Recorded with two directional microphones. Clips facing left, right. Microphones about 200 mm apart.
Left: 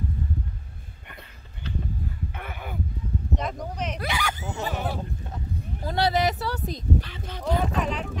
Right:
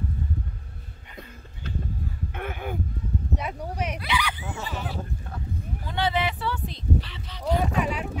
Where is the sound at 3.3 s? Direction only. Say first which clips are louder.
Left 2 dB; 10° right (ahead or behind).